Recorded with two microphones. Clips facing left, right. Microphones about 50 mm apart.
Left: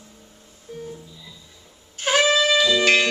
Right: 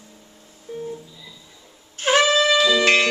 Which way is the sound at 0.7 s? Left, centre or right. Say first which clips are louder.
Right 4 dB; right.